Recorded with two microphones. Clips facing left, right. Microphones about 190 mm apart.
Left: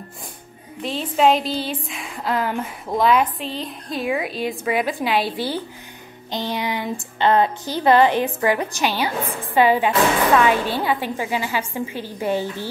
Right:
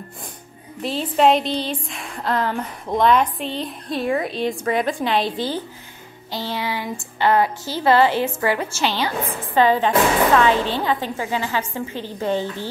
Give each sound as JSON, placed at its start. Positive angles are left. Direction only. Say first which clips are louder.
{"t": 0.8, "sound": "a woman's voice", "louder": "right 1 dB", "side_deg": 0}